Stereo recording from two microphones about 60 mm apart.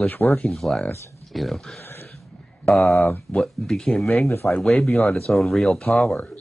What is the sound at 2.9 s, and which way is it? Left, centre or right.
Speech, left.